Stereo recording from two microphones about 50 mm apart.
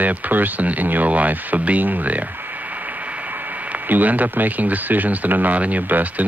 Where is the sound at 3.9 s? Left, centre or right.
Right.